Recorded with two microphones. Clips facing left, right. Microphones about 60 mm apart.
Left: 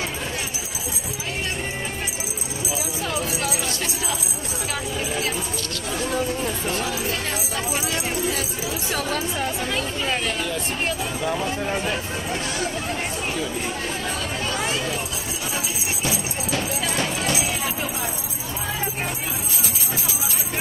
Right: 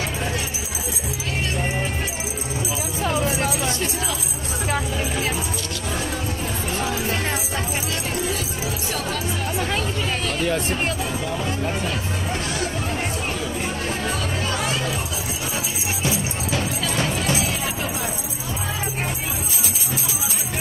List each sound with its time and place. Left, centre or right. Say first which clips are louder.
3.1 s music: right 5 dB; right
6.7 s music: right 4 dB; right
11.2 s speech: left 4 dB; centre
17.1 s music: right 1 dB; centre